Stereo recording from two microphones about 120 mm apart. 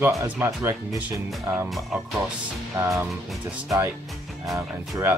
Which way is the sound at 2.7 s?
25° right (ahead or behind).